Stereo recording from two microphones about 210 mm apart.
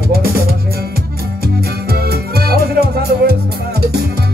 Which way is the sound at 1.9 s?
50° right (ahead or behind).